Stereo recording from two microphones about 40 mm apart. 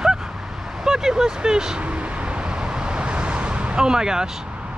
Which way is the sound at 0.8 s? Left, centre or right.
Centre.